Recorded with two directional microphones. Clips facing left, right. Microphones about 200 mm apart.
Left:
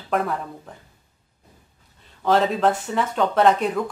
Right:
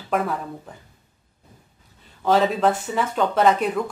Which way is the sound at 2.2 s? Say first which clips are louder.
Even; centre (ahead or behind).